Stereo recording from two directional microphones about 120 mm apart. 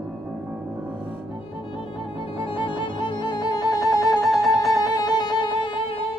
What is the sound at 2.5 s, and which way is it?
Music, 45° left (ahead or behind).